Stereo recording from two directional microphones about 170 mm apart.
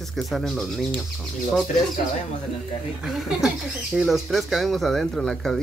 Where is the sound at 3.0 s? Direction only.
5° right (ahead or behind).